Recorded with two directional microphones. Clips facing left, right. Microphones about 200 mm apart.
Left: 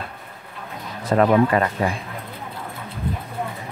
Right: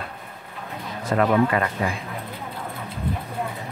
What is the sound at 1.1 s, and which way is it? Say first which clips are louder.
Speech: left 3 dB; 35° left (ahead or behind).